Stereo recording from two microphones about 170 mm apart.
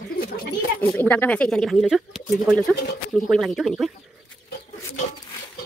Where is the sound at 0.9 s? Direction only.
10° left (ahead or behind).